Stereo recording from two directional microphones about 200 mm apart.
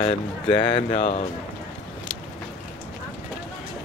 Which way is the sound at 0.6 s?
25° left (ahead or behind).